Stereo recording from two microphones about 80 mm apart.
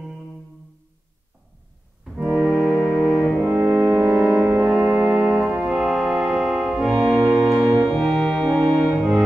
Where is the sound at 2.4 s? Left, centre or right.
Centre.